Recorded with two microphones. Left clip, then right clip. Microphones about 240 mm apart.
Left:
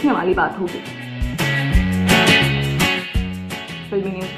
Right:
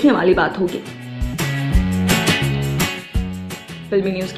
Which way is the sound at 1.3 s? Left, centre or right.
Centre.